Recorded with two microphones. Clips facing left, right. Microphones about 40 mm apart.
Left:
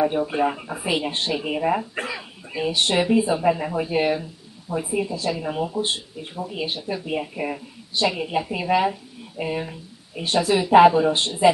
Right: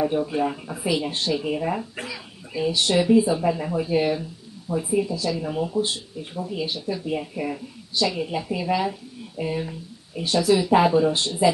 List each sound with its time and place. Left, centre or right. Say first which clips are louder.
0.0 s speech: left 2 dB; left
4.9 s speech: right 1 dB; left